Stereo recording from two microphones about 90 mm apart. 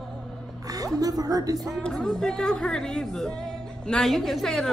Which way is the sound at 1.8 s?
10° left (ahead or behind).